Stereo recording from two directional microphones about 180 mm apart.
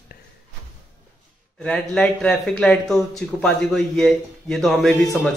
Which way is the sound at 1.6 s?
5° left (ahead or behind).